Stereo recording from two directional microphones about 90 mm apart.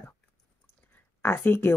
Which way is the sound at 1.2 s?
25° left (ahead or behind).